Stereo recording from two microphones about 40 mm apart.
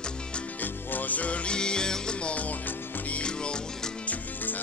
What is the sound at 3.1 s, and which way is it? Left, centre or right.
Music, left.